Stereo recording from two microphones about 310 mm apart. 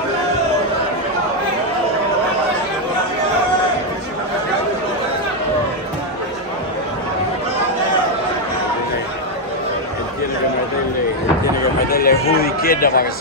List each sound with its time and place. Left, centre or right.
11.9 s music: left